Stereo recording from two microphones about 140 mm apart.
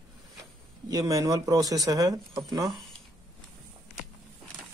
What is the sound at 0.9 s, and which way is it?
Speech, 25° right (ahead or behind).